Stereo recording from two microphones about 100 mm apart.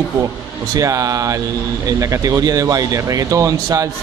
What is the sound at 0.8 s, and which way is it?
Speech, 35° right (ahead or behind).